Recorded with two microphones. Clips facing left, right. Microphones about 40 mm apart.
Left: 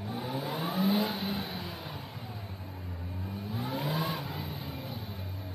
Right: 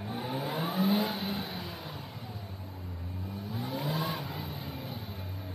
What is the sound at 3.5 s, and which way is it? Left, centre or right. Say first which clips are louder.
Vehicle: left 1 dB; centre.